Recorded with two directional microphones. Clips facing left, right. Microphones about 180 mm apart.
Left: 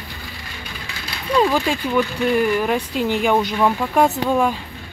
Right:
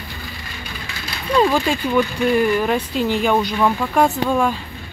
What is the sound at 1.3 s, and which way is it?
Speech, 5° left (ahead or behind).